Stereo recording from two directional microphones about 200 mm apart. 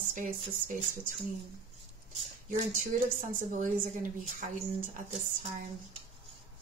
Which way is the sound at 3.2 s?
40° right (ahead or behind).